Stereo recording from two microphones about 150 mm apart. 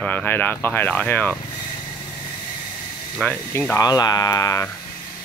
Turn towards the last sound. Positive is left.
turn(degrees=25)  # may be behind; listen again after turning